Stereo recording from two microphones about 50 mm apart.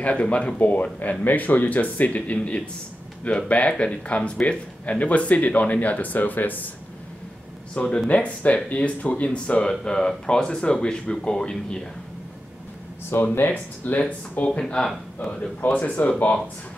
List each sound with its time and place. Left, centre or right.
0.0 s speech: left
0.6 s speech: left
7.7 s speech: left
13.1 s speech: left
13.5 s speech: left